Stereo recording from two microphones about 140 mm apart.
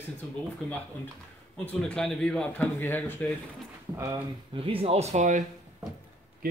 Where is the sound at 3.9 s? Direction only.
20° right (ahead or behind).